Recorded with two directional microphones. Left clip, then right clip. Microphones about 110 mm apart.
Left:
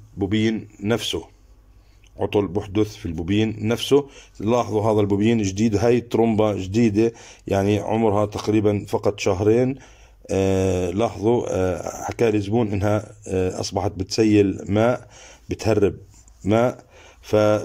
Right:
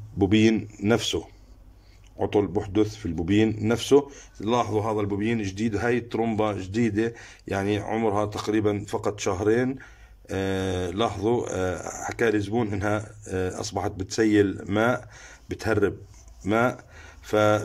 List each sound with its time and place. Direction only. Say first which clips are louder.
0.2 s speech: right 2 dB; 15° right (ahead or behind); by 4.3 s 5° left (ahead or behind)
4.4 s speech: left 4 dB; 20° left (ahead or behind)